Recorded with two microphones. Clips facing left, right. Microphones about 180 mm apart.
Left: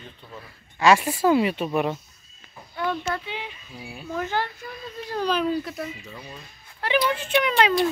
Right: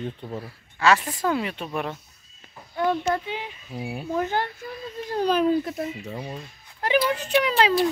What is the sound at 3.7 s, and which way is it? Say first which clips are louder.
Speech: right 11 dB; 65° right (ahead or behind).